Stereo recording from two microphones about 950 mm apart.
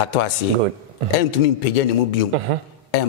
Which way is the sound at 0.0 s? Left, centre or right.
Left.